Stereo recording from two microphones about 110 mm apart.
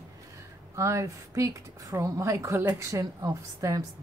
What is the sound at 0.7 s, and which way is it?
A woman's voice, 25° right (ahead or behind).